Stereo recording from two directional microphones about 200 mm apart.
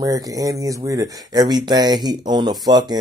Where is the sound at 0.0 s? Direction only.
15° right (ahead or behind).